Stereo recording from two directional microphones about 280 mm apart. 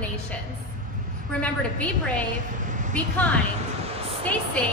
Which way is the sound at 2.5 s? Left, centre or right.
Right.